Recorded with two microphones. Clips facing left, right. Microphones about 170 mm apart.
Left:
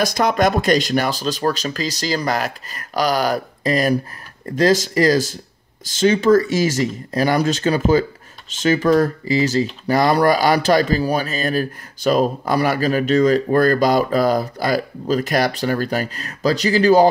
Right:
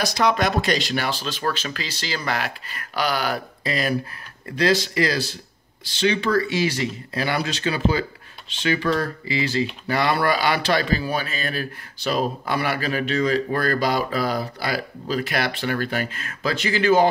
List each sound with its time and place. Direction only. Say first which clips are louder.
0.0 s a man's voice: left 4 dB; 50° left (ahead or behind)